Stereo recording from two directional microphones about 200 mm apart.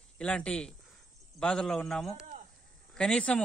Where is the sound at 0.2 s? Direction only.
5° left (ahead or behind).